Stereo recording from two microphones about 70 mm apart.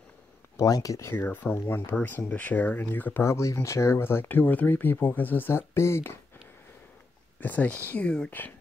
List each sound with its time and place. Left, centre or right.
0.7 s speech: left
1.1 s speech: left
3.3 s speech: left
7.3 s speech: left